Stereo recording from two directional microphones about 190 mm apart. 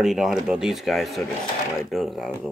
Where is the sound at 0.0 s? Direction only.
Centre (ahead or behind).